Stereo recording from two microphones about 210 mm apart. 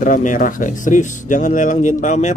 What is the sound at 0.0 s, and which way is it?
Speech, 40° left (ahead or behind).